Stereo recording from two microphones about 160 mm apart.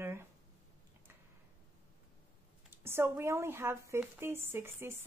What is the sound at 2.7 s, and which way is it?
A woman's voice, 15° right (ahead or behind).